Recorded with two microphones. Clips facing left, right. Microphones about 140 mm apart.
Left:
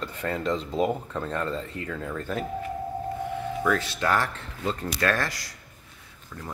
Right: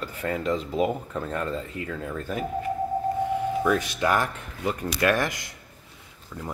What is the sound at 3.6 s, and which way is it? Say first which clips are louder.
Speech: left 1 dB; 15° right (ahead or behind).